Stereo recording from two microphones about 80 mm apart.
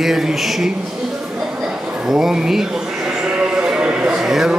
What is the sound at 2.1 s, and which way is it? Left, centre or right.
Speech, centre.